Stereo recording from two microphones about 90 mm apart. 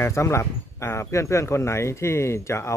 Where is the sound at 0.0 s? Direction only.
30° left (ahead or behind).